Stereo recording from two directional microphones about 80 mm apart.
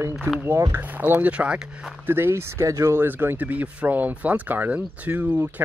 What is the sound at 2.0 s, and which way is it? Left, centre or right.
Speech, right.